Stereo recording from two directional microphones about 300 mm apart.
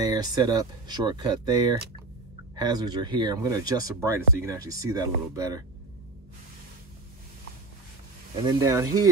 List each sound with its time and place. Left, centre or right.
0.0 s speech: centre
8.5 s speech: centre